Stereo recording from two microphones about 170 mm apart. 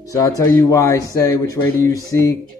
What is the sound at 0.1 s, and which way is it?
Speech, 20° left (ahead or behind).